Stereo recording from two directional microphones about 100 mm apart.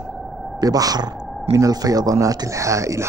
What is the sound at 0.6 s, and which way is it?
Speech, 40° right (ahead or behind).